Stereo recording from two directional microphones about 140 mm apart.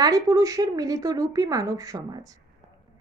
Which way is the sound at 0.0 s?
25° right (ahead or behind).